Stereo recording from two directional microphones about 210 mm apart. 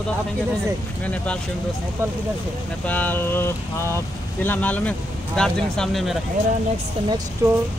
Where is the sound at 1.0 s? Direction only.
5° left (ahead or behind).